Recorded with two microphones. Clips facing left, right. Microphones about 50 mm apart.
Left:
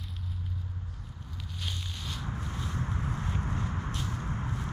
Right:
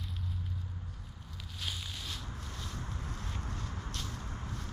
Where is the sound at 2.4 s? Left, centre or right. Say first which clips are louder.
Left 7 dB; centre.